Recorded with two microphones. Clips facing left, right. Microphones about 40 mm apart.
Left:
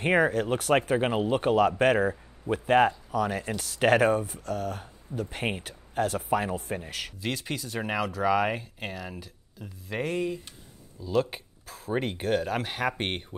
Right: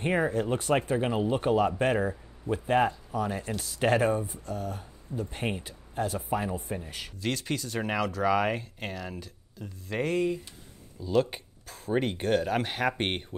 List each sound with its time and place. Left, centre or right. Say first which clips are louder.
0.0 s speech: left 3 dB; left
0.9 s speech: left 2 dB; left
1.3 s speech: left 3 dB; left
2.5 s speech: left 3 dB; left
3.1 s speech: left 3 dB; left
5.2 s speech: left 2 dB; left
5.6 s speech: left 3 dB; left
7.2 s speech: right 3 dB; centre